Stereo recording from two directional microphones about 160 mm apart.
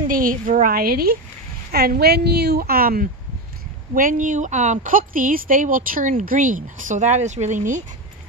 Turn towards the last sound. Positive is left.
turn(degrees=-50)  # may be behind; listen again after turning